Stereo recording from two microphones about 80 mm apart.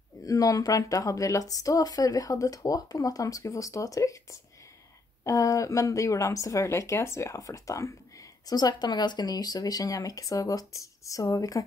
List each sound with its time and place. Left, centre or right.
0.2 s speech: left
8.5 s speech: left